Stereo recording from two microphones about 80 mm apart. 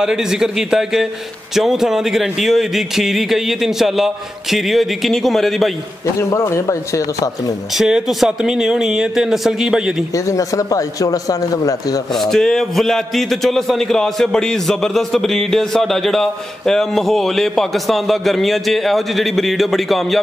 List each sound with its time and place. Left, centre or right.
0.0 s a man's voice: centre
6.3 s speech: left
7.7 s a man's voice: centre
10.1 s speech: left
12.1 s a man's voice: centre